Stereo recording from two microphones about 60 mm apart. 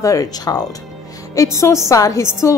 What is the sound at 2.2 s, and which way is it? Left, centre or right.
Speech, left.